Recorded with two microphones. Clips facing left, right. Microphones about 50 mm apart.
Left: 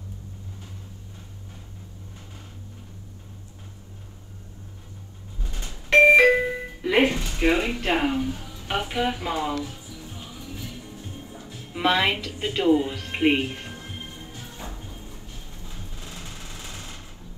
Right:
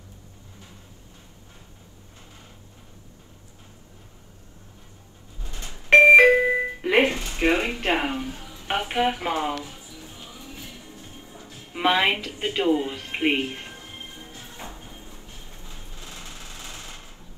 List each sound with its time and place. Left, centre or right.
5.6 s doorbell: right
10.3 s music: right
11.2 s music: left
11.7 s a woman's voice: centre
14.1 s music: right
15.9 s a sound: left